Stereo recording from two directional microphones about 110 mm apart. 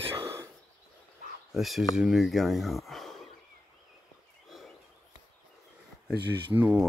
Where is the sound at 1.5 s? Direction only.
Centre (ahead or behind).